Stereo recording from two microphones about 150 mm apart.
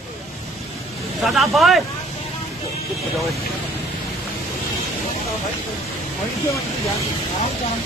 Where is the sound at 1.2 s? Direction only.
Centre (ahead or behind).